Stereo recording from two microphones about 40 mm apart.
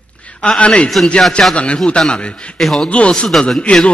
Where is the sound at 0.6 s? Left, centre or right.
Left.